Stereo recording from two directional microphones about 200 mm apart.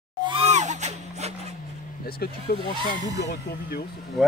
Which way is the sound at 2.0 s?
50° left (ahead or behind).